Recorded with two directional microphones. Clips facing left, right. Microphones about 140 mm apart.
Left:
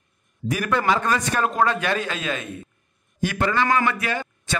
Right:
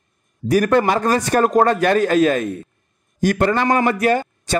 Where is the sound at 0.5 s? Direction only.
40° right (ahead or behind).